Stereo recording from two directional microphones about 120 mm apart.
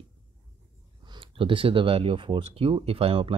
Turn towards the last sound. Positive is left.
turn(degrees=-50)  # may be behind; listen again after turning